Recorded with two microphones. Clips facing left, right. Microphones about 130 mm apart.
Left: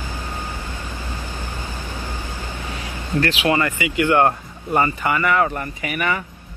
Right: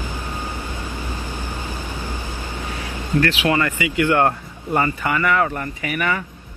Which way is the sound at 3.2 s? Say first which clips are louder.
Even; 25° left (ahead or behind).